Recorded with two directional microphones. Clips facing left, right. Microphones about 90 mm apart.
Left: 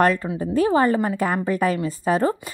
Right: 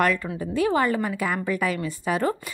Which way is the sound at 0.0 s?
35° left (ahead or behind).